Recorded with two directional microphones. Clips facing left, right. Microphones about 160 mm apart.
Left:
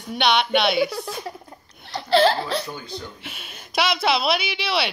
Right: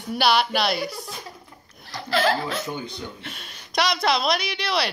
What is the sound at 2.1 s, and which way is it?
Laughter, 30° left (ahead or behind).